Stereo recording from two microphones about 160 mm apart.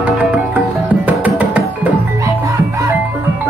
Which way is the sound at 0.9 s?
10° right (ahead or behind).